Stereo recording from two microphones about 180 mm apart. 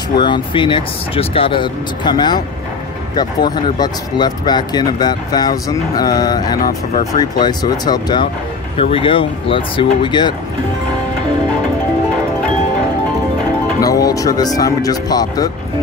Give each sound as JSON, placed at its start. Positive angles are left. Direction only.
{"t": 0.2, "sound": "speech", "side_deg": 25}
{"t": 13.7, "sound": "speech", "side_deg": 20}